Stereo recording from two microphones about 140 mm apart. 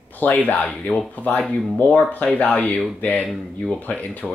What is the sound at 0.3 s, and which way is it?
Speech, 10° left (ahead or behind).